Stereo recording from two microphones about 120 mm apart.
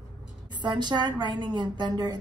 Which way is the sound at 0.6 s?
40° right (ahead or behind).